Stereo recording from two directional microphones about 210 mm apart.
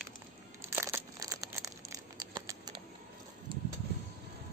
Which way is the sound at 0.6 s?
10° right (ahead or behind).